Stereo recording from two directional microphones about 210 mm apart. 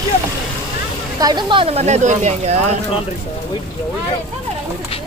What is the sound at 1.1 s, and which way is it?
Speech, 20° right (ahead or behind).